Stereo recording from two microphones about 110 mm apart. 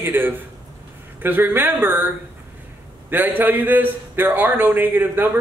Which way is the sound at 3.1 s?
15° right (ahead or behind).